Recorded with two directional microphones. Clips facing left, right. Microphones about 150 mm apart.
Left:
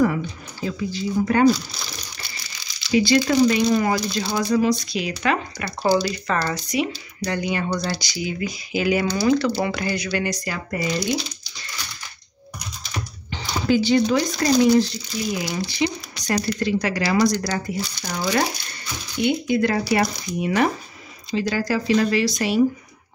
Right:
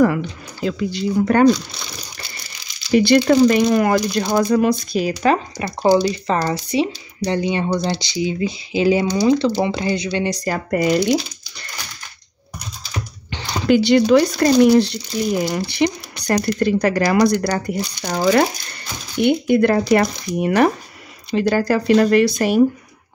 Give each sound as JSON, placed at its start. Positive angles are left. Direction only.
{"t": 0.0, "sound": "speech", "side_deg": -75}
{"t": 2.9, "sound": "speech", "side_deg": -60}
{"t": 10.4, "sound": "speech", "side_deg": -50}
{"t": 13.3, "sound": "speech", "side_deg": -65}